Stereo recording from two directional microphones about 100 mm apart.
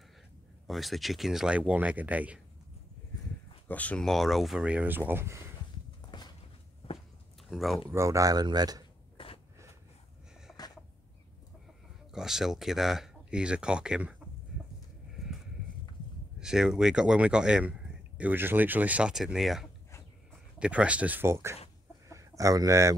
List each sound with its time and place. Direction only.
0.7 s speech: centre (ahead or behind)
3.6 s speech: 15° left (ahead or behind)
4.0 s speech: centre (ahead or behind); by 5.4 s 25° right (ahead or behind)
6.1 s cupboard open or close: 50° left (ahead or behind)
6.8 s walk: 75° left (ahead or behind)
7.4 s speech: centre (ahead or behind)
7.9 s speech: 30° right (ahead or behind)
10.6 s a sound: 40° left (ahead or behind)
12.1 s speech: 5° right (ahead or behind)
16.3 s speech: 5° right (ahead or behind); by 22.9 s 30° right (ahead or behind)